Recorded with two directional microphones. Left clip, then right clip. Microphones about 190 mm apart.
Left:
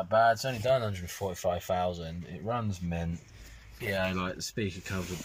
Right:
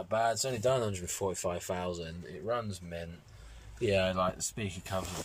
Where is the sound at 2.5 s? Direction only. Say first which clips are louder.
Left 1 dB; 10° left (ahead or behind).